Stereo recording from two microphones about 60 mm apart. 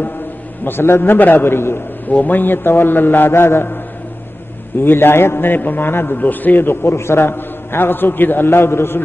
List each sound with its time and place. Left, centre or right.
0.7 s a man's voice: left
2.1 s a man's voice: left
4.8 s a man's voice: left